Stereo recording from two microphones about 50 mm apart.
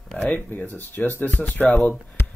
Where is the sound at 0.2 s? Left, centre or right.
Left.